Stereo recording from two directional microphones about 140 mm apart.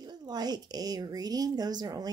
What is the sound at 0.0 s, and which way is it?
A woman's voice, 30° right (ahead or behind).